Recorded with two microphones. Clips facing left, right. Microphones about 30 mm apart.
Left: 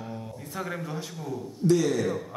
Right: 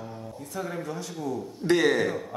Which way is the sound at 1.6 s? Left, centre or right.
Right.